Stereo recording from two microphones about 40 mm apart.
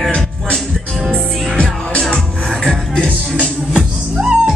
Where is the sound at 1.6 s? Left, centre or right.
Left.